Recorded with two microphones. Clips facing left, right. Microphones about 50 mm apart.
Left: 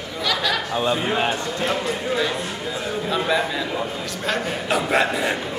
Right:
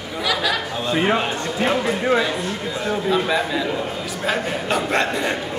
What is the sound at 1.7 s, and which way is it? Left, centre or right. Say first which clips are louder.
A man's voice: right 7 dB; centre.